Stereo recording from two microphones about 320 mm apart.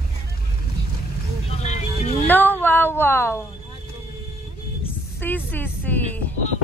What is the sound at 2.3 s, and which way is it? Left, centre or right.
Speech, centre.